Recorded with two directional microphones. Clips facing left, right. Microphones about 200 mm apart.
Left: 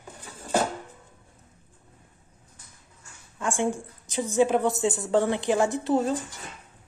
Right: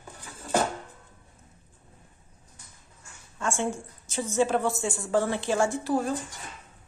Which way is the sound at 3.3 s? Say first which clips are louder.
Left 2 dB; 15° left (ahead or behind).